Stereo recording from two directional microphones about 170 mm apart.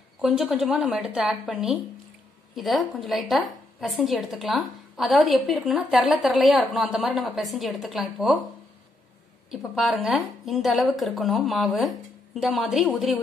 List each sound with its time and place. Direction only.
0.2 s a woman's voice: centre (ahead or behind)
9.5 s a woman's voice: centre (ahead or behind)